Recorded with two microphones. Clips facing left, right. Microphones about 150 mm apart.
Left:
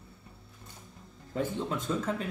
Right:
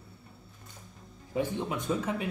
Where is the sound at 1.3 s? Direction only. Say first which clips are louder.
Right 1 dB; 15° right (ahead or behind).